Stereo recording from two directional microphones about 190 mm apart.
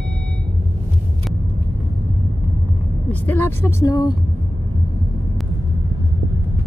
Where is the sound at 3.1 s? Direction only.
10° left (ahead or behind).